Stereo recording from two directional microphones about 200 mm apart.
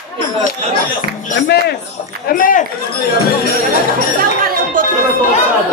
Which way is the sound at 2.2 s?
45° left (ahead or behind).